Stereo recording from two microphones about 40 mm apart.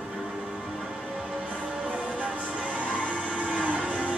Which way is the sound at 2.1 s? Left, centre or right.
Right.